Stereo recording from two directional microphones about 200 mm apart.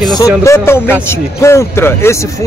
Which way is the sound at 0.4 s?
15° left (ahead or behind).